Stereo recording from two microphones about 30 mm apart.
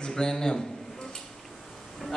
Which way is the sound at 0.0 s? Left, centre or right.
Left.